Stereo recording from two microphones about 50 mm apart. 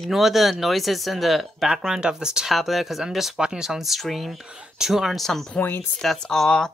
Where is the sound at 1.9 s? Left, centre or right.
Centre.